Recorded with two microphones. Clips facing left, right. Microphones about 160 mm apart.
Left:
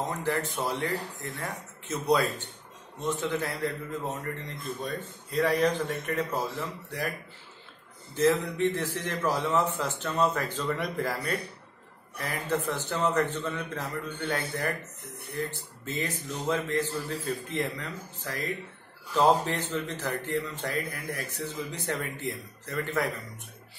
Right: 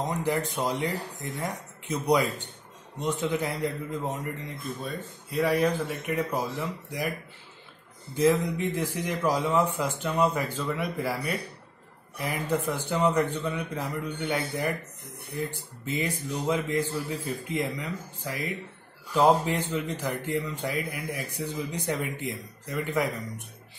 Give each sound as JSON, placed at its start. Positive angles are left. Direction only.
{"t": 0.0, "sound": "a man's voice", "side_deg": -15}
{"t": 8.1, "sound": "a man's voice", "side_deg": -15}